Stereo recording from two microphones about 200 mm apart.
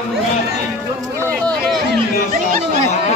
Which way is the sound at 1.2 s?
5° left (ahead or behind).